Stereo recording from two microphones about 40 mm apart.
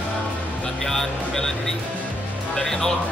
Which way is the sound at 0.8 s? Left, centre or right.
Centre.